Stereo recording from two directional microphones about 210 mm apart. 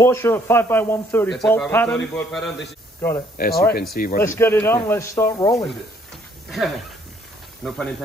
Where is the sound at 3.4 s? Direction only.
45° left (ahead or behind).